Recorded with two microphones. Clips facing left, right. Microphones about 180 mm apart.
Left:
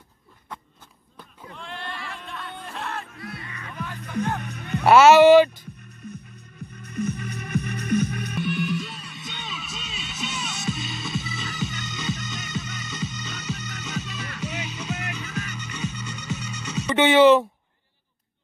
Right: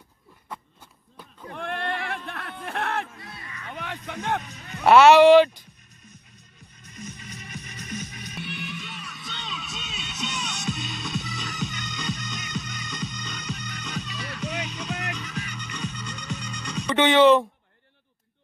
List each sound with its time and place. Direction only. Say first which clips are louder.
1.5 s a sound: right 7 dB; 55° right (ahead or behind)
3.7 s music: even; 70° right (ahead or behind)
4.1 s speech: left 2 dB; 65° right (ahead or behind)
4.4 s music: left 8 dB; 60° left (ahead or behind)
4.8 s speech: left 1 dB; centre (ahead or behind)
6.7 s music: left 13 dB; 60° left (ahead or behind); by 9.3 s 30° left (ahead or behind)
9.3 s music: right 1 dB; 5° left (ahead or behind)